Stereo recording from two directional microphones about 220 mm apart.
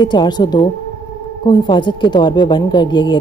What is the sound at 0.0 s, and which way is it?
Speech, 20° left (ahead or behind).